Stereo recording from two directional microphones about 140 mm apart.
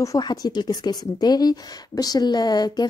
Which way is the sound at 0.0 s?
25° left (ahead or behind).